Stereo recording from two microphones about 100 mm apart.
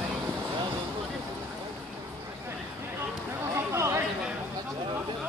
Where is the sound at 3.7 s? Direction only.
30° right (ahead or behind).